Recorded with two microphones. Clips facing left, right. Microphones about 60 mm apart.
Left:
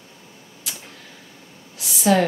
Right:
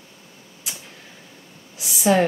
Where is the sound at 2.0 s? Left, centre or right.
Centre.